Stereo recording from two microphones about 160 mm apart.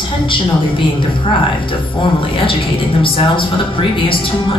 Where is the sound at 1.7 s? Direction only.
35° left (ahead or behind).